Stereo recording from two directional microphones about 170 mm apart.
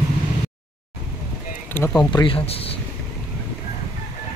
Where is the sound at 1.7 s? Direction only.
15° left (ahead or behind).